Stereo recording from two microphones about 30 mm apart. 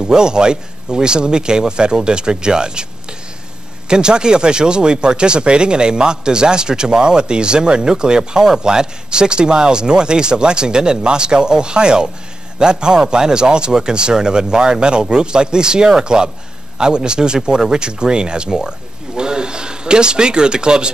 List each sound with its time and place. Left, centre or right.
0.0 s speech: right
3.9 s speech: right